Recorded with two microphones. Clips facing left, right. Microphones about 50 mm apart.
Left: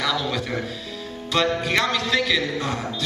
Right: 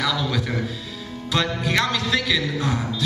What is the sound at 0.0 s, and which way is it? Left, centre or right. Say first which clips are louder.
Music: right 1 dB; centre.